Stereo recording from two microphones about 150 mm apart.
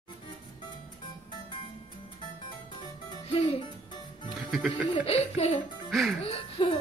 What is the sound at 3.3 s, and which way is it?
Laughter, 40° left (ahead or behind).